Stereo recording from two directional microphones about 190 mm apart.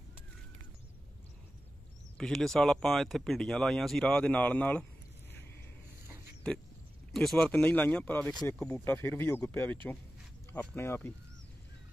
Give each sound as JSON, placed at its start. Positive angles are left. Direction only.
{"t": 2.1, "sound": "speech", "side_deg": 5}
{"t": 7.1, "sound": "speech", "side_deg": 0}
{"t": 8.3, "sound": "speech", "side_deg": 20}
{"t": 8.5, "sound": "speech", "side_deg": 10}